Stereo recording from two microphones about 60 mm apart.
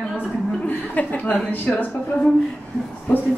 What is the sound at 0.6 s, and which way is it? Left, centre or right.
Speech, left.